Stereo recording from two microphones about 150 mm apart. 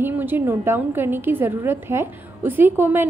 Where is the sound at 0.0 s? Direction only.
15° right (ahead or behind).